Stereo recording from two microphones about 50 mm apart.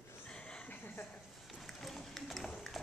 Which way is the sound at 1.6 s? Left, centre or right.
Centre.